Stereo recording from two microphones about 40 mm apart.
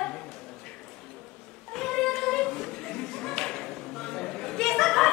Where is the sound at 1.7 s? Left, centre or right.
Centre.